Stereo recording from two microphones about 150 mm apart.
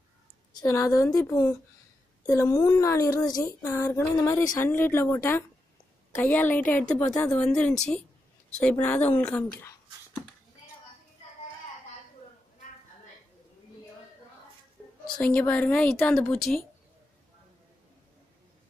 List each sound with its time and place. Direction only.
0.6 s speech: 20° left (ahead or behind)
7.5 s a woman's voice: 5° left (ahead or behind)
15.0 s speech: 10° left (ahead or behind)